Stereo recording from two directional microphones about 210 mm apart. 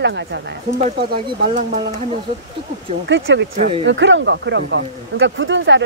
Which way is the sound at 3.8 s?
60° right (ahead or behind).